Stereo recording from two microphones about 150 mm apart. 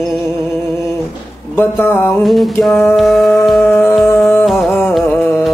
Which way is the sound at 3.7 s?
15° left (ahead or behind).